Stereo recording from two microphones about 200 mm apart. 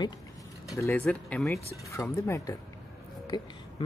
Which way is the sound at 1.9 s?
15° left (ahead or behind).